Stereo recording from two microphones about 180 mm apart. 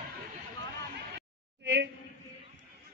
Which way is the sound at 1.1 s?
70° right (ahead or behind).